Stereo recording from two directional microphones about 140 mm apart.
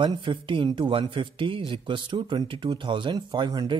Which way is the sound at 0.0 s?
35° right (ahead or behind).